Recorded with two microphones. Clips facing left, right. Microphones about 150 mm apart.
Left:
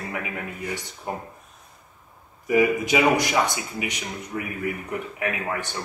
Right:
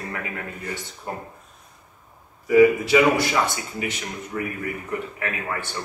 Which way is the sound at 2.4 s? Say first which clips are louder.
Right 5 dB; 20° left (ahead or behind).